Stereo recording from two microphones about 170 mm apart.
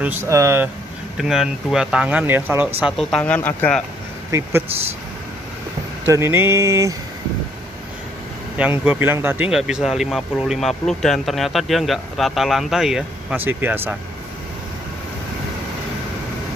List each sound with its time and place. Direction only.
0.0 s speech: 15° right (ahead or behind)
1.1 s speech: 5° right (ahead or behind)
2.8 s speech: centre (ahead or behind)
4.3 s speech: 15° right (ahead or behind)
6.0 s speech: 15° right (ahead or behind)
8.5 s speech: 10° right (ahead or behind)